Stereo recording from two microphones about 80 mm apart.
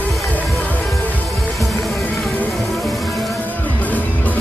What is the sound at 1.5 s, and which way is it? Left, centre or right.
Music, centre.